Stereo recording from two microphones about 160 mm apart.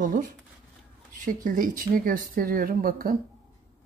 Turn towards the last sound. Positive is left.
turn(degrees=-65)  # may be behind; listen again after turning